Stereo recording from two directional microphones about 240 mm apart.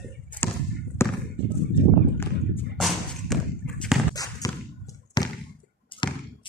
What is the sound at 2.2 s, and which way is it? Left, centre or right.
Thump, centre.